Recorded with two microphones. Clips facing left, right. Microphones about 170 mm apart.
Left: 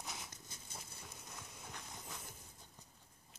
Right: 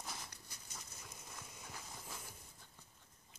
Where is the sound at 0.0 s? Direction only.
Centre (ahead or behind).